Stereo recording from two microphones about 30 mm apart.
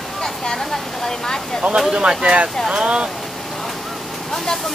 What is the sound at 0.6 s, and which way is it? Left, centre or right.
Speech, centre.